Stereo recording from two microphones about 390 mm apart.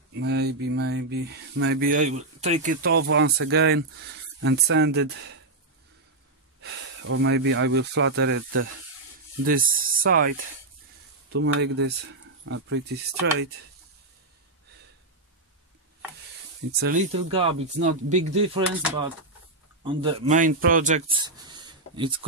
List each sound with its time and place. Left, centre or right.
0.1 s speech: right
6.6 s speech: right
11.3 s speech: right
16.8 s speech: centre